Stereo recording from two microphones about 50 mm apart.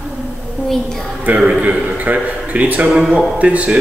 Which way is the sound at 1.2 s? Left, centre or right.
Right.